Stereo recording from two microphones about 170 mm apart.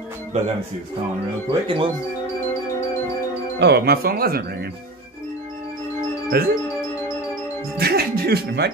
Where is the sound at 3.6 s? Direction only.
70° right (ahead or behind).